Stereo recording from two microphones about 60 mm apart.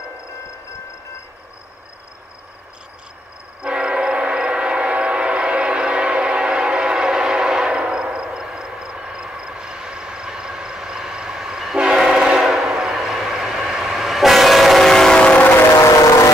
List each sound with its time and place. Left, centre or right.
3.6 s train: centre
15.1 s train: left